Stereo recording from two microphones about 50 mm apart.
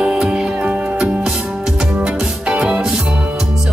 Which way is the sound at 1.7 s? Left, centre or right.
Centre.